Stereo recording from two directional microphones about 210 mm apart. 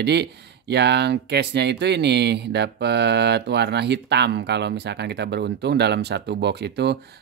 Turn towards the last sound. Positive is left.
turn(degrees=-50)  # may be behind; listen again after turning